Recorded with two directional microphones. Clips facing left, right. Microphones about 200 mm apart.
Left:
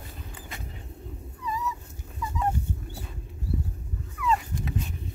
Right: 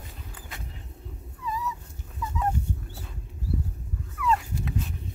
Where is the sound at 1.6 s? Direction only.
Centre (ahead or behind).